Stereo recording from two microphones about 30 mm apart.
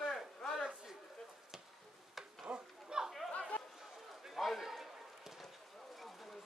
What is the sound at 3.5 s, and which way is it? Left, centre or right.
Chatter, left.